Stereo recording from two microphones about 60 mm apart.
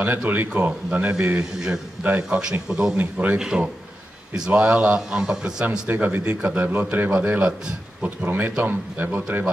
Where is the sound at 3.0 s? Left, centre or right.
Right.